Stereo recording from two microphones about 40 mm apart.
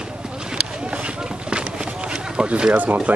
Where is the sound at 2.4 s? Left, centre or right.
Right.